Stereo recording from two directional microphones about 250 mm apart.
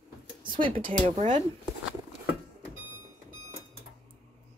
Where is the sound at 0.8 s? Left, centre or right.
Right.